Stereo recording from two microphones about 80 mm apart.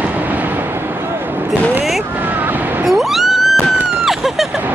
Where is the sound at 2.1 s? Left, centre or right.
Right.